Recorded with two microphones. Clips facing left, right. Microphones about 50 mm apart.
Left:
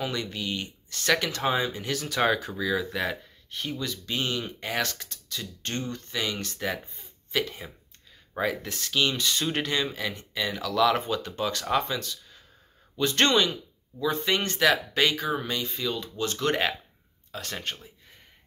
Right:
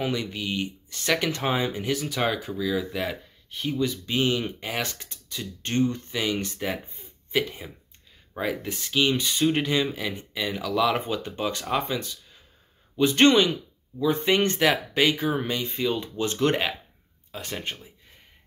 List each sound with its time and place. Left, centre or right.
0.1 s speech: centre
1.3 s speech: right
1.9 s speech: centre
3.7 s speech: centre
4.6 s speech: centre
4.8 s speech: centre
8.6 s speech: centre
14.0 s speech: right
17.3 s speech: centre